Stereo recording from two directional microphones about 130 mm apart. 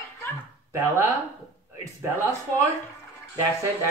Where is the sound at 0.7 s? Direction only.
20° right (ahead or behind).